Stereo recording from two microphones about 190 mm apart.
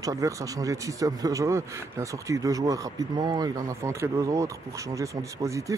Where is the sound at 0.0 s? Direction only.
15° right (ahead or behind).